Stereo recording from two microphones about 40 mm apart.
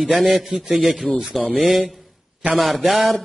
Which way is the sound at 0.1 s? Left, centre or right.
Right.